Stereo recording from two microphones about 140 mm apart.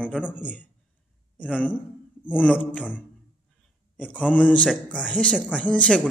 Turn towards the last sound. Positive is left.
turn(degrees=10)  # may be behind; listen again after turning